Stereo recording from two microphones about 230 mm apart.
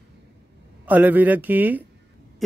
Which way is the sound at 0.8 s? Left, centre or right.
Centre.